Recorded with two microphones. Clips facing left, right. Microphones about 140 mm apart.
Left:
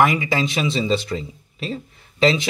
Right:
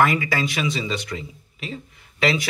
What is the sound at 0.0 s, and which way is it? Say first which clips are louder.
Speech: left 2 dB; 20° left (ahead or behind).